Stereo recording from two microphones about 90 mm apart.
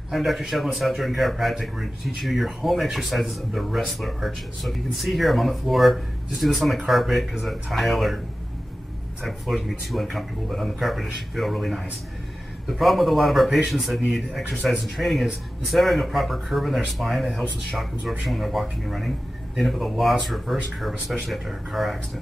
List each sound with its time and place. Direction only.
0.1 s speech: centre (ahead or behind)
9.2 s speech: centre (ahead or behind)